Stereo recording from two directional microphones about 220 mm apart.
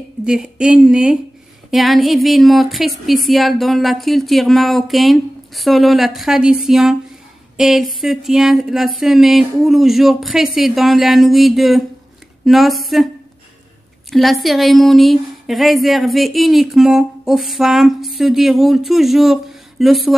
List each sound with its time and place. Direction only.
0.2 s a woman's voice: 5° right (ahead or behind)
14.1 s a woman's voice: centre (ahead or behind)